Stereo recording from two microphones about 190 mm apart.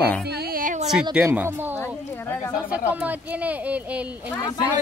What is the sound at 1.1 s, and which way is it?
Speech, 10° right (ahead or behind).